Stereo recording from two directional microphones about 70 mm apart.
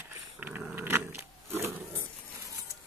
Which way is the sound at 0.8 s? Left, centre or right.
Right.